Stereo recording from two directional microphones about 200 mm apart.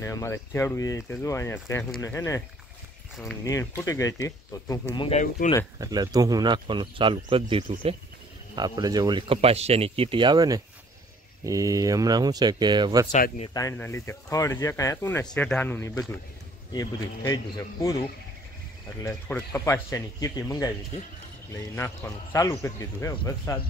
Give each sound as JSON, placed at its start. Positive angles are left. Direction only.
{"t": 0.0, "sound": "speech", "side_deg": 15}
{"t": 3.4, "sound": "speech", "side_deg": 15}
{"t": 5.5, "sound": "speech", "side_deg": 35}
{"t": 5.8, "sound": "speech", "side_deg": -20}
{"t": 13.1, "sound": "speech", "side_deg": 40}
{"t": 13.5, "sound": "speech", "side_deg": 15}
{"t": 19.0, "sound": "speech", "side_deg": 10}